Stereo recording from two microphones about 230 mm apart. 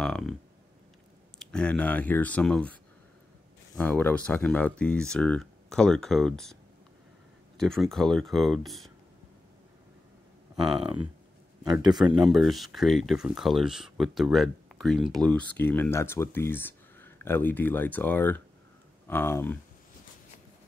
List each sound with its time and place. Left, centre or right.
0.0 s a sound: centre
1.4 s speech: centre
3.7 s speech: centre
10.5 s speech: centre
12.2 s speech: centre